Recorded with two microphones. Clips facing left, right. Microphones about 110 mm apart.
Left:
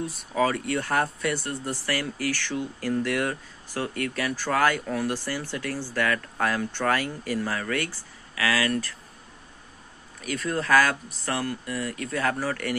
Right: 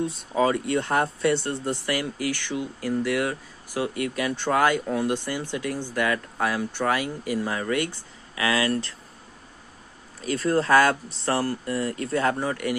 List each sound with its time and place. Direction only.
0.0 s speech: 25° right (ahead or behind)
10.2 s speech: 30° right (ahead or behind)